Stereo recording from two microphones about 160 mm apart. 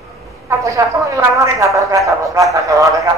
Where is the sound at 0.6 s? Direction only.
20° right (ahead or behind).